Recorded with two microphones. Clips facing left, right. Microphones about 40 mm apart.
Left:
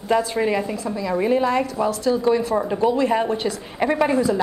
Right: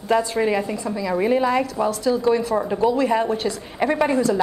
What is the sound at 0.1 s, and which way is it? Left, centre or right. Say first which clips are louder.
A woman's voice: even; centre.